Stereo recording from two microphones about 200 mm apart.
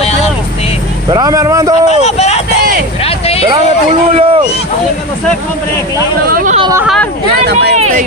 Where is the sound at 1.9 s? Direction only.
35° left (ahead or behind).